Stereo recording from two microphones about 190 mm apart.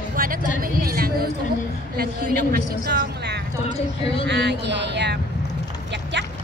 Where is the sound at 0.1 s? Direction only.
50° right (ahead or behind).